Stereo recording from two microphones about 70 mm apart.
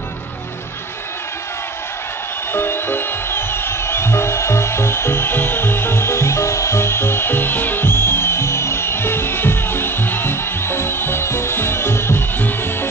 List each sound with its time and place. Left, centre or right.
2.5 s music: left